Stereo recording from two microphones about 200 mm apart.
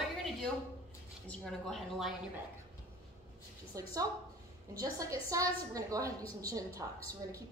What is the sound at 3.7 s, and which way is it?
A woman's voice, 15° right (ahead or behind).